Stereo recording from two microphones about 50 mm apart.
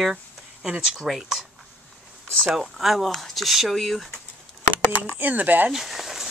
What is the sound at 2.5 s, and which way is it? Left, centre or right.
Speech, centre.